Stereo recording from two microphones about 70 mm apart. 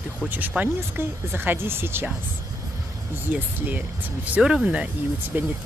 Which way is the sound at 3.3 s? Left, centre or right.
Right.